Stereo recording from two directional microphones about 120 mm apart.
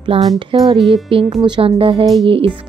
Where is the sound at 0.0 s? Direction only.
40° right (ahead or behind).